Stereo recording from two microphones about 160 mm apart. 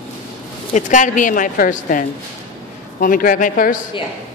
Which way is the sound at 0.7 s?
50° left (ahead or behind).